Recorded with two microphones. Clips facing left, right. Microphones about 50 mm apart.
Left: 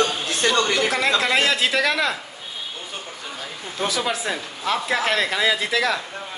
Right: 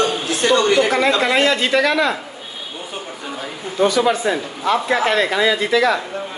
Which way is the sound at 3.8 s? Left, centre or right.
Centre.